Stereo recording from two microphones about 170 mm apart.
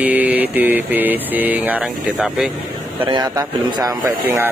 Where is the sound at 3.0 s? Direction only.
25° right (ahead or behind).